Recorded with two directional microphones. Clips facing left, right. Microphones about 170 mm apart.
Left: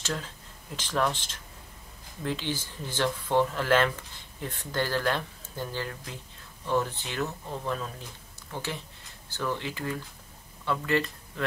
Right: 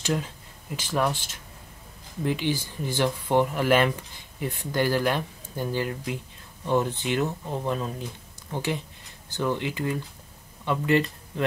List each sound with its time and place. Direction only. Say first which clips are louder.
0.0 s speech: right 6 dB; 15° right (ahead or behind)